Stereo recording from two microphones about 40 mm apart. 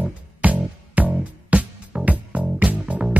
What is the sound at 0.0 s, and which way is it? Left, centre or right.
Music, right.